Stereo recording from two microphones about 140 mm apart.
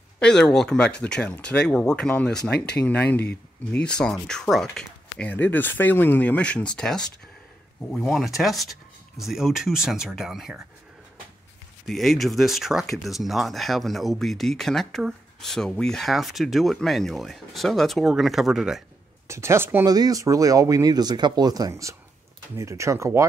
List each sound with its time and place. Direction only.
0.2 s speech: 5° left (ahead or behind)
11.9 s speech: centre (ahead or behind)
19.2 s speech: 20° right (ahead or behind)